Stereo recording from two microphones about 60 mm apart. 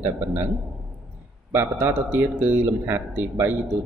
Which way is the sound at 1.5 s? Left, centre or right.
Right.